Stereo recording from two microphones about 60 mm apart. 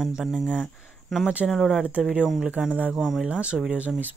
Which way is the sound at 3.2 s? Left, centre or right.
Centre.